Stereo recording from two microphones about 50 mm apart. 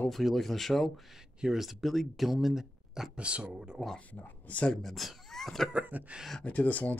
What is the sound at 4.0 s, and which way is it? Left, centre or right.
Speech, left.